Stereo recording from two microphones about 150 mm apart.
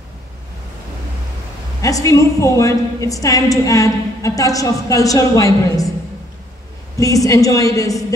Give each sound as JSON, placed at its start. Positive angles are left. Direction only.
{"t": 1.8, "sound": "a woman's voice", "side_deg": 20}
{"t": 7.0, "sound": "a woman's voice", "side_deg": 20}